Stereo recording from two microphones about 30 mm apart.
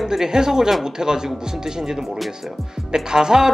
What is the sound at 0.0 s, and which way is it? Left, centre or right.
Speech, centre.